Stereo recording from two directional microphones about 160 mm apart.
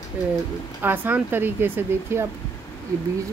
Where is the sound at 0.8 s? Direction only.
10° right (ahead or behind).